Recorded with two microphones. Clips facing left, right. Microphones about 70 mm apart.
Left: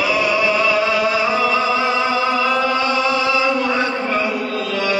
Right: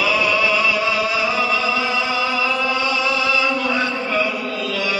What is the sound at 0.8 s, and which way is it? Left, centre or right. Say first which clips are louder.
Chant: left 3 dB; left.